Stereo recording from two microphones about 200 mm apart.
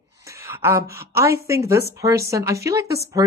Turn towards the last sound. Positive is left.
turn(degrees=-15)  # may be behind; listen again after turning